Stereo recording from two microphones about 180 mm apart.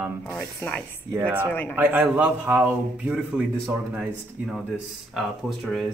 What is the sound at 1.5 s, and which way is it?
Speech, 10° left (ahead or behind).